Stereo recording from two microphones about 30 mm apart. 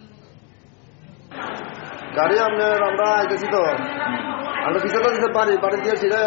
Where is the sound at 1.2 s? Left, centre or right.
Centre.